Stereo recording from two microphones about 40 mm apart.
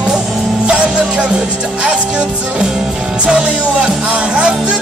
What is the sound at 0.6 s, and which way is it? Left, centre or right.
Music, right.